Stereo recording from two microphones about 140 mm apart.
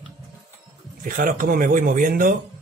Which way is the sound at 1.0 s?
70° right (ahead or behind).